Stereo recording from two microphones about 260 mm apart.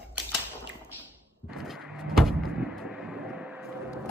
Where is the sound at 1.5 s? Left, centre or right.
Centre.